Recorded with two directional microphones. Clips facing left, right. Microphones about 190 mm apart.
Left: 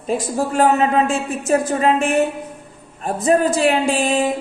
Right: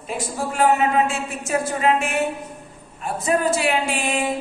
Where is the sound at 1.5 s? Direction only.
40° left (ahead or behind).